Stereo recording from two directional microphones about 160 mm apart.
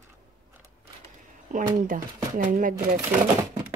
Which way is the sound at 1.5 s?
55° right (ahead or behind).